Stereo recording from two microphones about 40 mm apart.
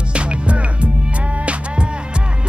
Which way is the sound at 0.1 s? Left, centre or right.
Right.